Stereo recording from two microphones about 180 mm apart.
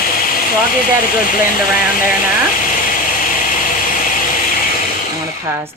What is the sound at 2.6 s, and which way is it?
Vehicle, 50° left (ahead or behind).